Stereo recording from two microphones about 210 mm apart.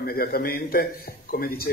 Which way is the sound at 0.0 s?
45° left (ahead or behind).